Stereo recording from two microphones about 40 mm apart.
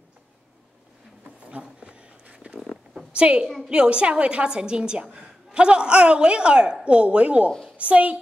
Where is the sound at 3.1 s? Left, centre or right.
Right.